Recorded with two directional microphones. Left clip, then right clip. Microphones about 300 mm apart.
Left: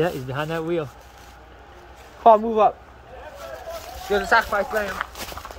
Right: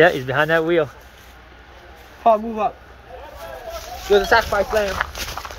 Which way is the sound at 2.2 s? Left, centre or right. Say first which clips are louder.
Left 2 dB; centre.